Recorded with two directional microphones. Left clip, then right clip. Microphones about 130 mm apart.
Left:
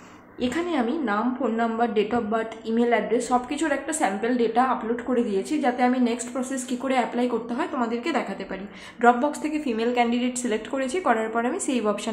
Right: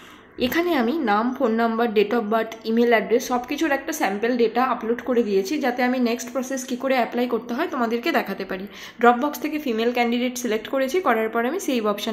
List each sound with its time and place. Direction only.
0.4 s a woman's voice: 45° right (ahead or behind); by 6.4 s 30° right (ahead or behind)
6.5 s a woman's voice: 20° right (ahead or behind)